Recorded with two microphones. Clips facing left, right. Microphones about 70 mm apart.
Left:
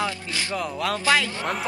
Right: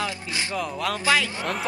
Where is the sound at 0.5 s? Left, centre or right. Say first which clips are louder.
Left 2 dB; centre.